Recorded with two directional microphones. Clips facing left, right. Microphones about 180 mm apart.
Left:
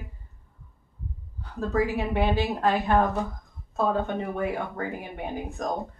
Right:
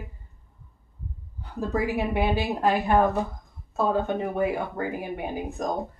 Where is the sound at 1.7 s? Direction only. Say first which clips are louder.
Even; 10° right (ahead or behind).